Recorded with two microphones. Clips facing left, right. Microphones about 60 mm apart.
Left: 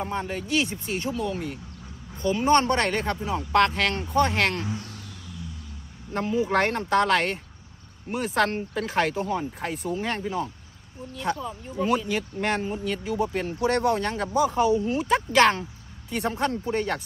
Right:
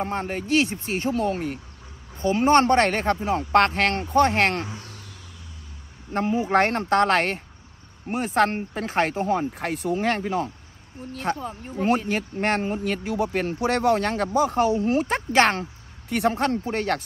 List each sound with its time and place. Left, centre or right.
0.0 s speech: right
4.4 s speech: right
4.6 s speech: centre
6.1 s speech: right
9.6 s speech: right
11.3 s speech: right
16.1 s speech: right